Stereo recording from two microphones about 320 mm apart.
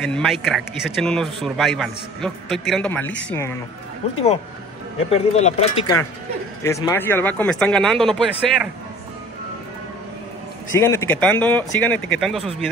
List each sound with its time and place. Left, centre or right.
0.0 s speech: centre
5.1 s speech: centre
10.7 s speech: centre